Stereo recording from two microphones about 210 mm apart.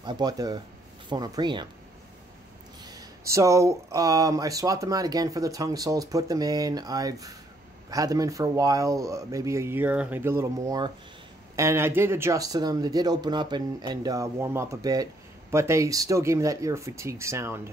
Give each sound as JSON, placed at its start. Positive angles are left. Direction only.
{"t": 0.0, "sound": "speech", "side_deg": -20}
{"t": 2.8, "sound": "speech", "side_deg": -15}